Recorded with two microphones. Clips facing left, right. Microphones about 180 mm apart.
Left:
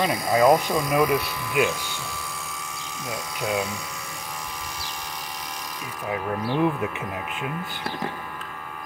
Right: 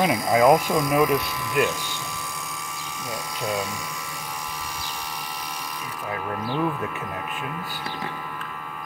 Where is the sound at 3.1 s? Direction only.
Centre (ahead or behind).